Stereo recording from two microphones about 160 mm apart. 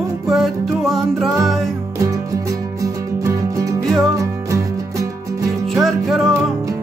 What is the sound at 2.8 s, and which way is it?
Music, 20° right (ahead or behind).